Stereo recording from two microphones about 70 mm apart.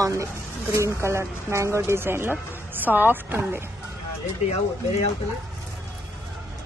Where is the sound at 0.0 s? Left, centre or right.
Right.